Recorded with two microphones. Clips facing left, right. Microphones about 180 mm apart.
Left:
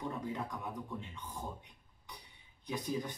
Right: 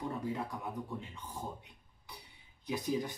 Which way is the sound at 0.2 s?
5° right (ahead or behind).